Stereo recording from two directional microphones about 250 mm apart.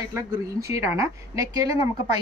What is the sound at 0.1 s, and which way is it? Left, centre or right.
A woman's voice, centre.